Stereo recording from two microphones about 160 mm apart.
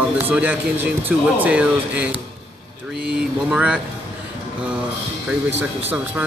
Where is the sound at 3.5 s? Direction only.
5° right (ahead or behind).